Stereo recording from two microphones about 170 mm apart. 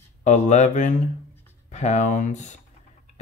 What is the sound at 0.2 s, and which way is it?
Speech, 45° left (ahead or behind).